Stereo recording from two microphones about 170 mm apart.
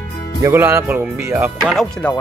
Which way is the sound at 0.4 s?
15° right (ahead or behind).